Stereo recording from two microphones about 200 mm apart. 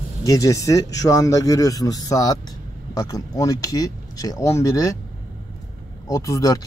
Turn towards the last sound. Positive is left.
turn(degrees=15)  # may be behind; listen again after turning